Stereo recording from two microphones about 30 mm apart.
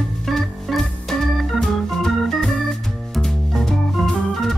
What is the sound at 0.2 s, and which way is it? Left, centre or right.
Organ, centre.